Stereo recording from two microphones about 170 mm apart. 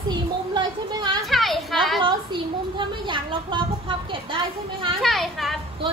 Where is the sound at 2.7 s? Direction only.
30° right (ahead or behind).